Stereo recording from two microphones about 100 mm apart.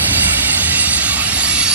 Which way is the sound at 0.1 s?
20° right (ahead or behind).